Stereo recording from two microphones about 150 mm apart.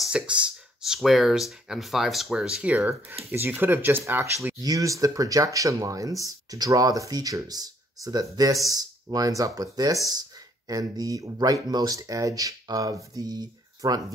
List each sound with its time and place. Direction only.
0.0 s speech: 5° right (ahead or behind); by 14.0 s 25° right (ahead or behind)